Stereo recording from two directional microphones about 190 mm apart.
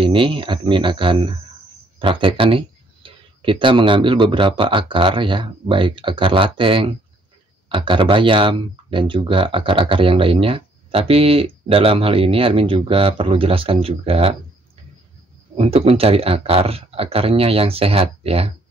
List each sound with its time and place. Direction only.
0.0 s speech: 25° right (ahead or behind)
15.5 s speech: 30° right (ahead or behind)